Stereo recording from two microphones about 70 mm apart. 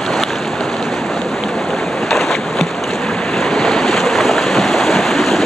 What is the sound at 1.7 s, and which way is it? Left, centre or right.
Boat, centre.